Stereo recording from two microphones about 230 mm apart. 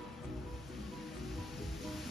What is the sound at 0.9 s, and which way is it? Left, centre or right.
Music, centre.